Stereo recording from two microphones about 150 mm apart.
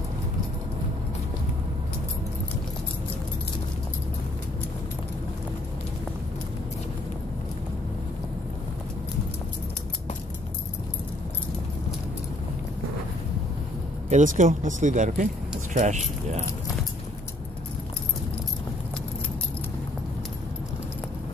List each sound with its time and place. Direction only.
14.0 s speech: 55° right (ahead or behind)